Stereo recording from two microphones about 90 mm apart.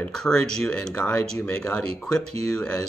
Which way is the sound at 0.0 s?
10° left (ahead or behind).